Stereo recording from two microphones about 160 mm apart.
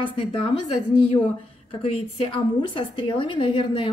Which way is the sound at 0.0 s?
35° left (ahead or behind).